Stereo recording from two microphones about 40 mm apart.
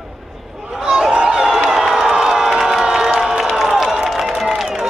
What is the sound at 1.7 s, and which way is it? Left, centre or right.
Crowd, centre.